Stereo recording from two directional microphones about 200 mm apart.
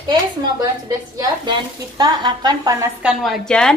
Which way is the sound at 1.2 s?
20° right (ahead or behind).